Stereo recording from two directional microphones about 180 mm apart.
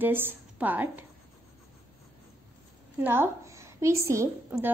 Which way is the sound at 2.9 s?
10° right (ahead or behind).